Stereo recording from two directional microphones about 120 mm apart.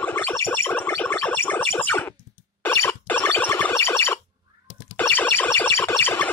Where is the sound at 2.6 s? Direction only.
20° left (ahead or behind).